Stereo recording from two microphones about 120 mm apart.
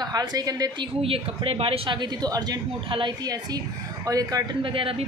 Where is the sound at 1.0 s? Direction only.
55° right (ahead or behind).